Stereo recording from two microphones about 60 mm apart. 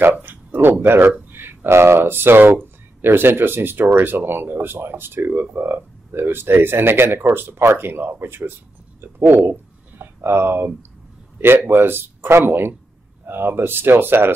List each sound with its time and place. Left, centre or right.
0.0 s speech: right